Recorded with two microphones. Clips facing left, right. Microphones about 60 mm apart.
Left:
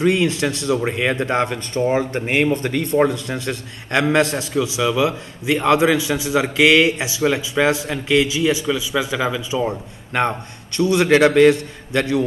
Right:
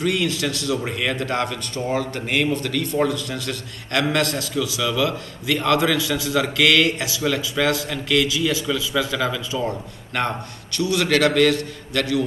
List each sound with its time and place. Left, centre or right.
0.0 s a man's voice: left